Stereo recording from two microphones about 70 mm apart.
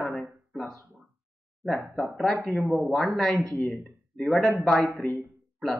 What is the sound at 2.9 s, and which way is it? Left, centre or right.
A woman's voice, centre.